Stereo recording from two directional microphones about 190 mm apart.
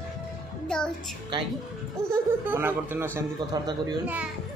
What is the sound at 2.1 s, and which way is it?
Speech, 10° right (ahead or behind).